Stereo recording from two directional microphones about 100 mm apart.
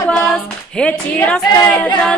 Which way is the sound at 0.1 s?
10° left (ahead or behind).